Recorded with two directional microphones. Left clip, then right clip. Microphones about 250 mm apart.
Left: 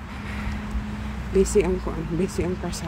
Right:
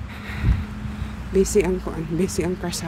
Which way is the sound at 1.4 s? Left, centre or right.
Centre.